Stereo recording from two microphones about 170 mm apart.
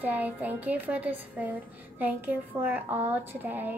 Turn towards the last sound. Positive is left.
turn(degrees=-10)  # may be behind; listen again after turning